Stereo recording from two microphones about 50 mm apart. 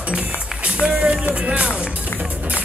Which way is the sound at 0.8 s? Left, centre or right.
Right.